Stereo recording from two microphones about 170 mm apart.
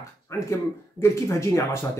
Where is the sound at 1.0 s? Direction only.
15° left (ahead or behind).